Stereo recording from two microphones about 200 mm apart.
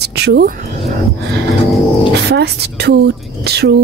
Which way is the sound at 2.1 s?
55° right (ahead or behind).